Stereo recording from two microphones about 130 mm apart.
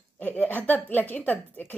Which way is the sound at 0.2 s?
10° left (ahead or behind).